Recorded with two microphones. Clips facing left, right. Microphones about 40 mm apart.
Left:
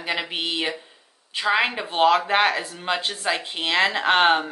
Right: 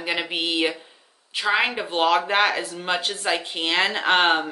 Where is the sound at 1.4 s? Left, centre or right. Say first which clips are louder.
Even; centre.